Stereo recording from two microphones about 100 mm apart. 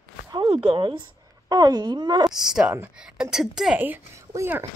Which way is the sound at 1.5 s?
40° right (ahead or behind).